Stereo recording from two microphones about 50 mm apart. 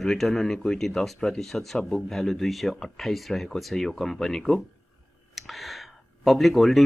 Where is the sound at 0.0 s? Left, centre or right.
Centre.